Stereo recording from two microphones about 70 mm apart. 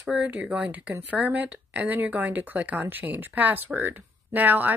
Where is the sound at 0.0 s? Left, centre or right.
Centre.